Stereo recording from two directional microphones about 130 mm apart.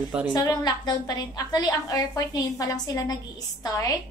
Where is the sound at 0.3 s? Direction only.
30° left (ahead or behind).